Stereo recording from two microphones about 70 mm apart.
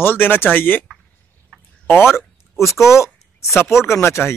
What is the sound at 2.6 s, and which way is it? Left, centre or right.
Speech, left.